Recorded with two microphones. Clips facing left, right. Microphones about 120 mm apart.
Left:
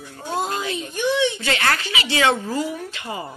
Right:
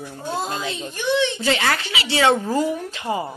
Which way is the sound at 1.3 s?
15° right (ahead or behind).